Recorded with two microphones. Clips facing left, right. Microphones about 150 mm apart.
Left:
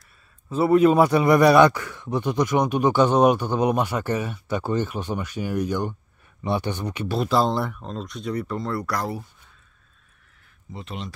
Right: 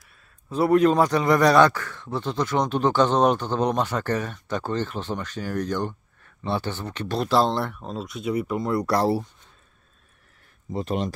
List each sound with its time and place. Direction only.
0.5 s a man's voice: 5° left (ahead or behind); by 8.8 s 15° right (ahead or behind)
8.8 s speech: 30° right (ahead or behind)
10.7 s speech: 40° right (ahead or behind)